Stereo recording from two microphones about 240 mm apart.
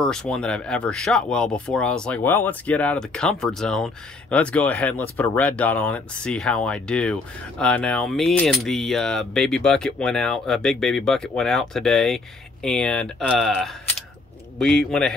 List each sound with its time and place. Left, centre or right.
0.0 s speech: centre